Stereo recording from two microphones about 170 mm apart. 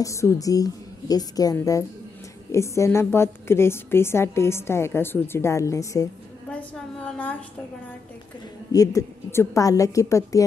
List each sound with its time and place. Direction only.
0.0 s a woman's voice: 15° left (ahead or behind)
8.7 s a woman's voice: 20° left (ahead or behind)